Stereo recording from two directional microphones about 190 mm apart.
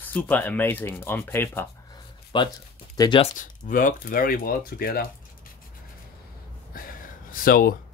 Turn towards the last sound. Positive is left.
turn(degrees=50)  # may be behind; listen again after turning